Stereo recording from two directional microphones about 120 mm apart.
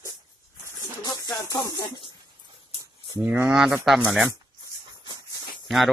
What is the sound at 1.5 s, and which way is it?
Speech, 30° left (ahead or behind).